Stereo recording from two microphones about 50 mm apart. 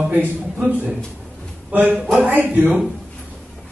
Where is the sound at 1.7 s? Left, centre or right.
Right.